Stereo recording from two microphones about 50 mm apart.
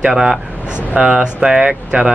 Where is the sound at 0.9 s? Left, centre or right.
Right.